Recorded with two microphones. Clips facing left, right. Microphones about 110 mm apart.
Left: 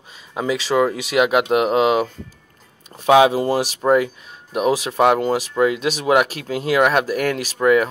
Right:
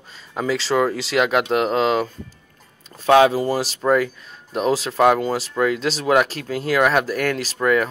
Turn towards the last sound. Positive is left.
turn(degrees=20)  # may be behind; listen again after turning